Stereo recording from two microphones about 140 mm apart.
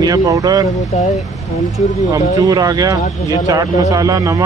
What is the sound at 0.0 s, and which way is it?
Speech, 25° right (ahead or behind).